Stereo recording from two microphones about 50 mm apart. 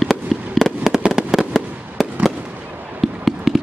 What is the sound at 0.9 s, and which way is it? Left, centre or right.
Fireworks, centre.